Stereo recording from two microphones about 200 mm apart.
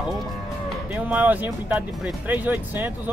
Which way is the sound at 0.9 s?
10° right (ahead or behind).